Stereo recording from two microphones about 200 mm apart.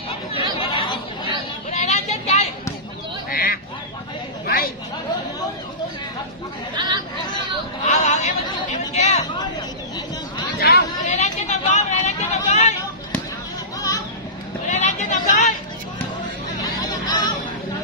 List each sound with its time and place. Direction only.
0.1 s chatter: 25° left (ahead or behind)
1.7 s vehicle: 35° left (ahead or behind)
3.3 s duck: 45° left (ahead or behind)
7.8 s vehicle: 35° left (ahead or behind)
8.9 s a sound: 35° left (ahead or behind)
10.6 s chatter: 50° left (ahead or behind)
11.1 s vehicle: 35° left (ahead or behind)
12.4 s a sound: 35° left (ahead or behind)
14.7 s a sound: 35° left (ahead or behind)
16.8 s music: 20° left (ahead or behind)